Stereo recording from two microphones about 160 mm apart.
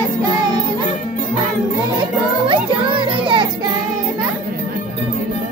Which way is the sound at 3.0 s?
30° right (ahead or behind).